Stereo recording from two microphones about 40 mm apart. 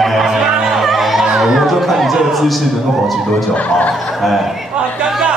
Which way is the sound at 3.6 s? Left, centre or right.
Left.